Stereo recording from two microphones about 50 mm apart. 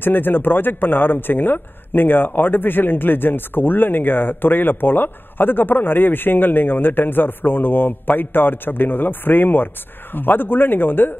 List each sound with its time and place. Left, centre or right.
0.0 s speech: left